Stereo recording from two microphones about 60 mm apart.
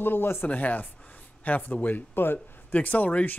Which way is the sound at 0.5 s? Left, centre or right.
Left.